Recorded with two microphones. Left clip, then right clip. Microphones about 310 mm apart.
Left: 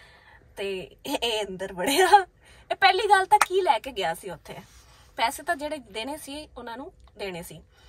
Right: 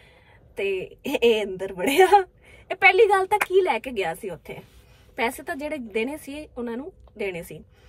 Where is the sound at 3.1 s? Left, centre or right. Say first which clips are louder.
Left 2 dB; left.